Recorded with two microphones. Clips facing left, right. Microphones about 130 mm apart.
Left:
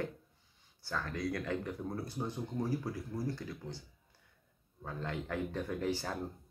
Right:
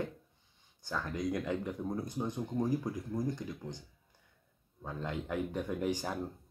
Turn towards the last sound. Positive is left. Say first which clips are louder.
# right 2 dB
turn(degrees=-15)  # may be behind; listen again after turning